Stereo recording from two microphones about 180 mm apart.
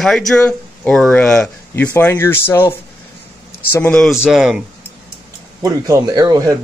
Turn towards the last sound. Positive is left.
turn(degrees=-20)  # may be behind; listen again after turning